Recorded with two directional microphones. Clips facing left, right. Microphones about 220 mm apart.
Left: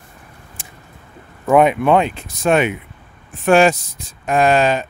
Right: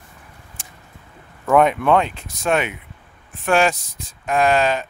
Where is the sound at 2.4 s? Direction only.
20° left (ahead or behind).